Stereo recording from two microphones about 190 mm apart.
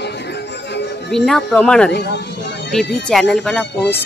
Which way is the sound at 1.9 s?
65° left (ahead or behind).